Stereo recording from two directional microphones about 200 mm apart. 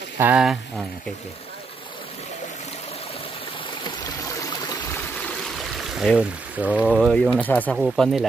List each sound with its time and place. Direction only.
0.2 s speech: 5° right (ahead or behind)
3.8 s stream: 20° left (ahead or behind)
5.6 s stream: centre (ahead or behind)
6.9 s speech: centre (ahead or behind)